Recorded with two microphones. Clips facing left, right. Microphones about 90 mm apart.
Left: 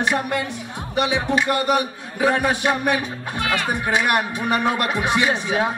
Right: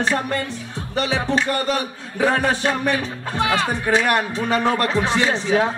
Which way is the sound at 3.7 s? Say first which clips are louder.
Right 1 dB; 15° left (ahead or behind).